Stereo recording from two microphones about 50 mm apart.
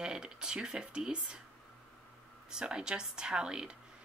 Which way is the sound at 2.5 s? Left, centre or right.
Centre.